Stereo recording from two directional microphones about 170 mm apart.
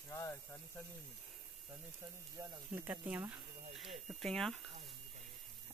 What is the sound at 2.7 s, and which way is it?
Speech, 10° right (ahead or behind).